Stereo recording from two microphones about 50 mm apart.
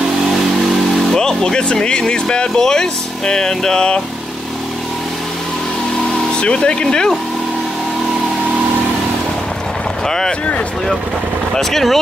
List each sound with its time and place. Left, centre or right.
1.1 s speech: centre
6.4 s speech: centre
10.0 s speech: centre
11.5 s speech: centre